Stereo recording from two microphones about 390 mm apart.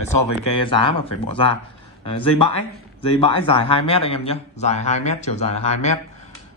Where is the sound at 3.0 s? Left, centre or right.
Centre.